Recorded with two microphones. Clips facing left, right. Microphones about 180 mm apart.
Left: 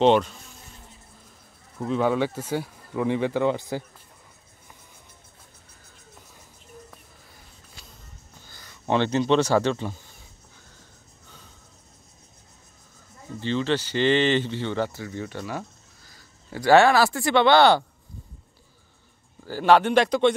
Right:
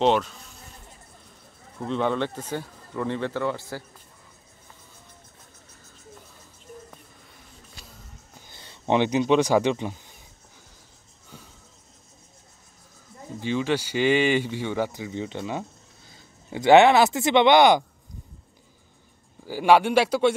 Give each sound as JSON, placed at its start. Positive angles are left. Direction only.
{"t": 0.0, "sound": "speech", "side_deg": 0}
{"t": 1.9, "sound": "speech", "side_deg": 5}
{"t": 8.5, "sound": "speech", "side_deg": -25}
{"t": 13.4, "sound": "speech", "side_deg": -10}
{"t": 19.4, "sound": "speech", "side_deg": -10}